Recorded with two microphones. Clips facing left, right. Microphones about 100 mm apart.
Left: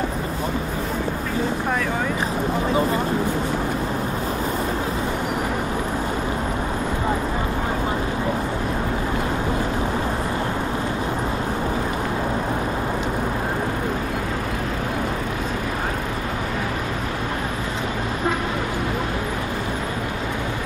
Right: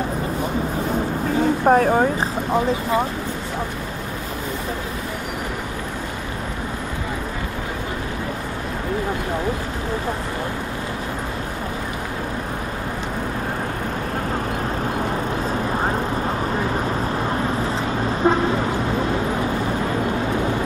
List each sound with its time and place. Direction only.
1.7 s speech: 40° right (ahead or behind)